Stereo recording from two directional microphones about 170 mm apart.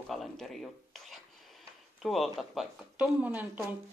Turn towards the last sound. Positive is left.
turn(degrees=-10)  # may be behind; listen again after turning